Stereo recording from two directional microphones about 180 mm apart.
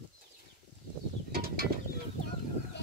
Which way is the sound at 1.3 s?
55° right (ahead or behind).